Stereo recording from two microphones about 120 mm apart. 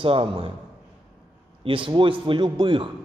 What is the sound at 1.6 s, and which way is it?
A man's voice, 45° right (ahead or behind).